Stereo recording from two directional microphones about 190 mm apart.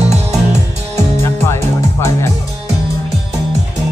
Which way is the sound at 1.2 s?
15° left (ahead or behind).